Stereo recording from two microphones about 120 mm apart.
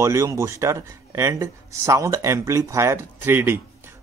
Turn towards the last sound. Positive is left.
turn(degrees=-20)  # may be behind; listen again after turning